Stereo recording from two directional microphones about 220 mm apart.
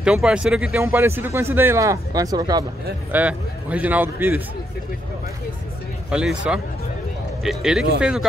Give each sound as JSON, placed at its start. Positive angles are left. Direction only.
{"t": 0.0, "sound": "speech", "side_deg": -5}
{"t": 3.1, "sound": "speech", "side_deg": -5}
{"t": 6.0, "sound": "speech", "side_deg": -5}